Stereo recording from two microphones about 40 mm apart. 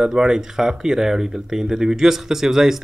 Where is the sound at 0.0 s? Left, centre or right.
Centre.